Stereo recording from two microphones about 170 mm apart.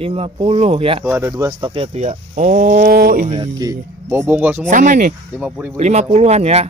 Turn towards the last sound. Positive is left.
turn(degrees=-40)  # may be behind; listen again after turning